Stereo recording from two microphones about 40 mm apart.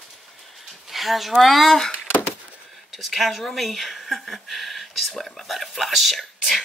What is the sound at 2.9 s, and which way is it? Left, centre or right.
Speech, centre.